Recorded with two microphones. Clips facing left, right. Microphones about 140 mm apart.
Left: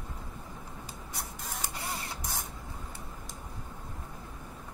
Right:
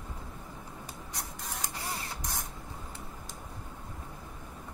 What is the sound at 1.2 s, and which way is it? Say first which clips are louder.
Printer: even; 5° left (ahead or behind).